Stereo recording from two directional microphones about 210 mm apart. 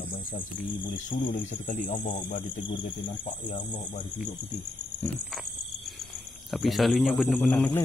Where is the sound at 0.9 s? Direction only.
40° left (ahead or behind).